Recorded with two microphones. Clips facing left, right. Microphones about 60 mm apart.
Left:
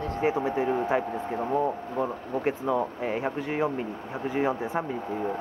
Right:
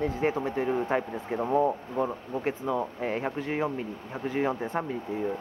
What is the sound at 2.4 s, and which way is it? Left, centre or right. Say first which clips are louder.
Speech: left 3 dB; centre.